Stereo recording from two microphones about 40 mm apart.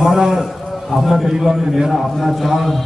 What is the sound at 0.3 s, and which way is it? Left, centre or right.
A man's voice, centre.